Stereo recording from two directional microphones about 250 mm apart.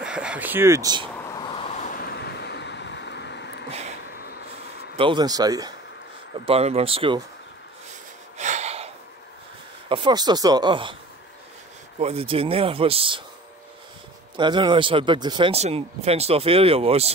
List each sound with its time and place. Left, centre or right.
0.0 s speech: centre
1.3 s vehicle: centre; by 3.6 s left
4.1 s a sound: left
4.9 s speech: centre
8.4 s a sound: right
9.8 s speech: centre
12.0 s speech: right
14.3 s speech: centre